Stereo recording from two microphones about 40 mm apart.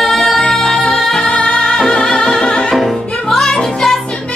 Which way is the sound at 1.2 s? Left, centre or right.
Left.